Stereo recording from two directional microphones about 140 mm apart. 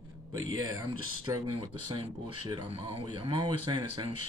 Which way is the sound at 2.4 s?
35° right (ahead or behind).